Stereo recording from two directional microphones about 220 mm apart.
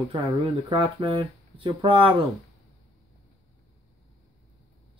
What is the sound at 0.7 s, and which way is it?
Speech, 20° right (ahead or behind).